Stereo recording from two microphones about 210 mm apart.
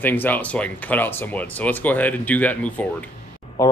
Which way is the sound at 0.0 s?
10° left (ahead or behind).